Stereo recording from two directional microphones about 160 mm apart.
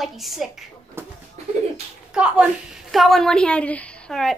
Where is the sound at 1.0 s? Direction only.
15° right (ahead or behind).